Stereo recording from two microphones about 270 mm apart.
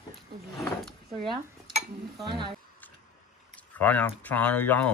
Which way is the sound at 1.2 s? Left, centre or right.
Centre.